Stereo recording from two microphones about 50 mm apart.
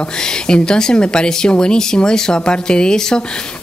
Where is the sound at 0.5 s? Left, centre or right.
Centre.